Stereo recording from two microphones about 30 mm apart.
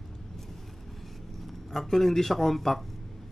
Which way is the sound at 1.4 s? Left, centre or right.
Centre.